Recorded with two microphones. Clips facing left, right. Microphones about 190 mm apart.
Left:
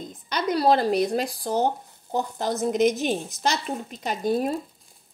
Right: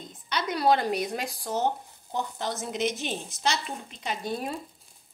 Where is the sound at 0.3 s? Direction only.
40° left (ahead or behind).